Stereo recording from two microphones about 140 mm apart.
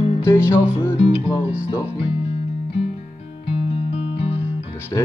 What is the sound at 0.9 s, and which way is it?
Music, 40° left (ahead or behind).